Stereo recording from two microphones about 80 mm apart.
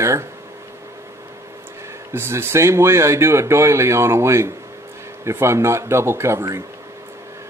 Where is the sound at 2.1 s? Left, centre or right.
Right.